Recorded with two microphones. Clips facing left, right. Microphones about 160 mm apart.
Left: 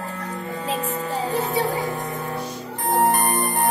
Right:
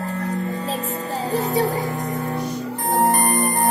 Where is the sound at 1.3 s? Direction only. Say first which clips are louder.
Right 4 dB; 40° right (ahead or behind).